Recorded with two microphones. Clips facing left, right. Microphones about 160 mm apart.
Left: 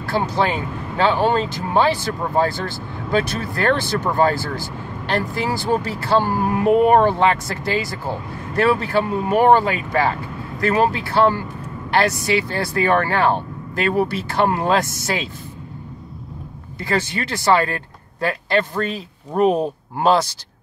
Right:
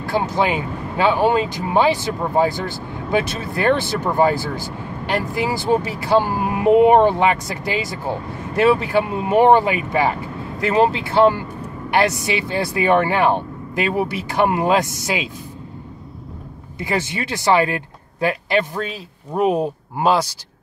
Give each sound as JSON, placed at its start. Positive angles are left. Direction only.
{"t": 0.0, "sound": "speech", "side_deg": -15}
{"t": 16.8, "sound": "speech", "side_deg": -15}